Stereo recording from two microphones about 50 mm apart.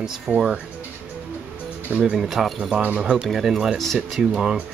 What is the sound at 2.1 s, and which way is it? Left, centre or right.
Speech, centre.